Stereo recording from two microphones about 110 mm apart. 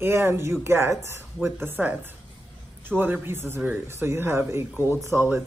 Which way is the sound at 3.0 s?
20° right (ahead or behind).